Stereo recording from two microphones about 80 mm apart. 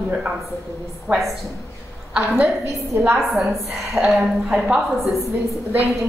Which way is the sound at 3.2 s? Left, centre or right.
Centre.